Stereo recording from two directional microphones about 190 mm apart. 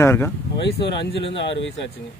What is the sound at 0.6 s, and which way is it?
Speech, 65° left (ahead or behind).